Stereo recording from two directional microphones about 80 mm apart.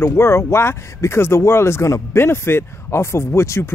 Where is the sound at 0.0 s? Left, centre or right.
Left.